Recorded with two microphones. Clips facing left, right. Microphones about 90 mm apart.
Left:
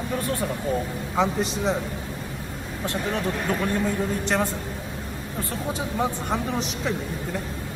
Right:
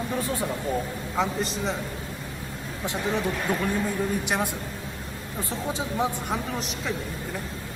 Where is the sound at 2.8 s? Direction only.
15° right (ahead or behind).